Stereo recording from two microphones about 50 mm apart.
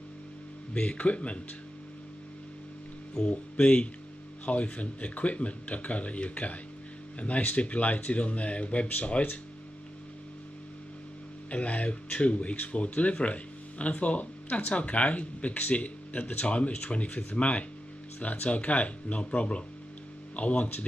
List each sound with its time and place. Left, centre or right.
0.7 s speech: left
3.2 s speech: left
11.5 s speech: left